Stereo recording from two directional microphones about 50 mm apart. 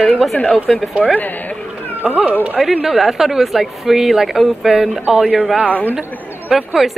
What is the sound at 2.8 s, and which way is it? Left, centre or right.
Speech, centre.